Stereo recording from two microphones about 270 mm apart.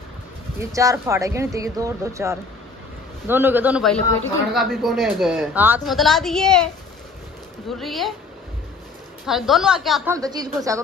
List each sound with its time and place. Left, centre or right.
0.6 s a woman's voice: centre
7.8 s a woman's voice: centre
9.2 s a woman's voice: centre
10.1 s speech: centre